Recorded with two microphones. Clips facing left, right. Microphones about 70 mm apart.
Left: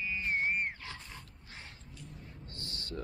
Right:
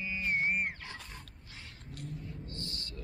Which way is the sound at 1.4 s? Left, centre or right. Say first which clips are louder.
Left 1 dB; left.